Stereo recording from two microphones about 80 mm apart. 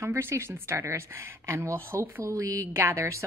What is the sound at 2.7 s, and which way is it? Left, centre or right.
Speech, right.